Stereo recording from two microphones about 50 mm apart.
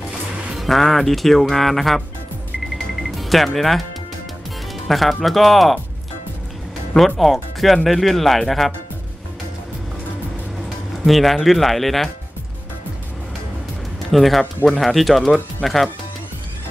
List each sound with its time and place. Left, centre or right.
0.6 s speech: centre
2.6 s music: centre
4.8 s speech: centre
6.9 s speech: left
7.6 s speech: centre
11.1 s speech: centre
14.1 s speech: centre